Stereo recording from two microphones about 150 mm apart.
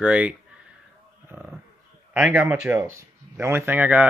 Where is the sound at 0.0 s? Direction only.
10° right (ahead or behind).